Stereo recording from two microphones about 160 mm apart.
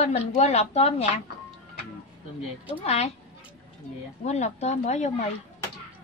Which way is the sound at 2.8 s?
40° left (ahead or behind).